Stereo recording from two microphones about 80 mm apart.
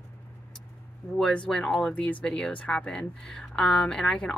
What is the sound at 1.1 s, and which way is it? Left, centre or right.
Speech, centre.